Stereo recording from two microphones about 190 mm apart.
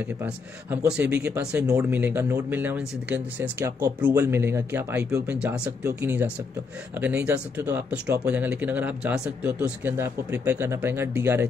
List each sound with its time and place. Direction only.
0.2 s a man's voice: 10° right (ahead or behind)